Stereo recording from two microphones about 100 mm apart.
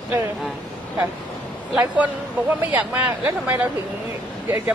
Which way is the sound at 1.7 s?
15° right (ahead or behind).